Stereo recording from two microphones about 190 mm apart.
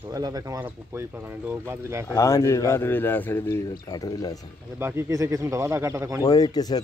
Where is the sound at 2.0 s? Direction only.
15° left (ahead or behind).